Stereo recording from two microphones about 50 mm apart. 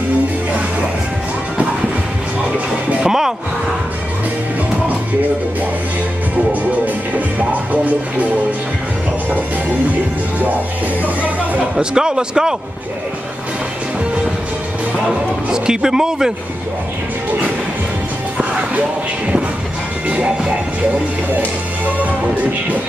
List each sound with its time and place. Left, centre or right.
3.0 s music: centre
6.5 s music: right
11.7 s speech: centre
15.0 s speech: centre
20.1 s music: right